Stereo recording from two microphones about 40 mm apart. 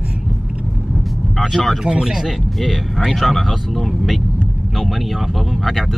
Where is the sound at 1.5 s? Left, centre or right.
Centre.